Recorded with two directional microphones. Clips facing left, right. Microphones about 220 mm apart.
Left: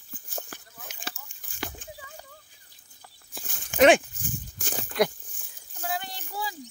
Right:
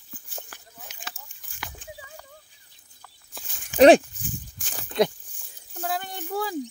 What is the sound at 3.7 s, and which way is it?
Speech, 35° right (ahead or behind).